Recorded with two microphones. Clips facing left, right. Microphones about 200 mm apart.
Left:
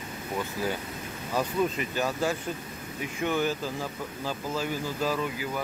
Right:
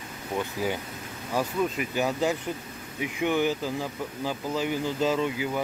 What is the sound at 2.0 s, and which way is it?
Speech, 15° right (ahead or behind).